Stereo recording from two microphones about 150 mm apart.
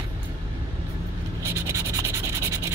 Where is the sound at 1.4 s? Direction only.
20° right (ahead or behind).